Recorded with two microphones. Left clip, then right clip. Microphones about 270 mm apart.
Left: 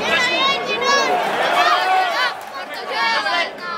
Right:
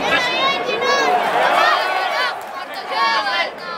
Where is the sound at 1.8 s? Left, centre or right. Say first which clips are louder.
Left 2 dB; centre.